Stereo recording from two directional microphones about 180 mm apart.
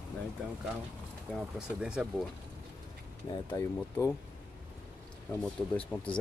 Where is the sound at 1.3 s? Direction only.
5° right (ahead or behind).